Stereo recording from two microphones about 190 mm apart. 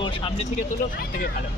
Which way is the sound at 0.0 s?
25° left (ahead or behind).